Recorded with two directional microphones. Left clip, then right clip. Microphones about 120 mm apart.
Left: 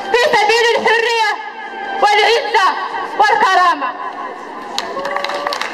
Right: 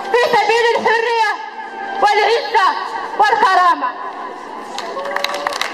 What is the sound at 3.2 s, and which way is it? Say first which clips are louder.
Snicker: left 1 dB; 30° left (ahead or behind).